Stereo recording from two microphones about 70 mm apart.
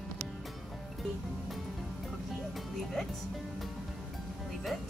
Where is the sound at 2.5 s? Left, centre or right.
Centre.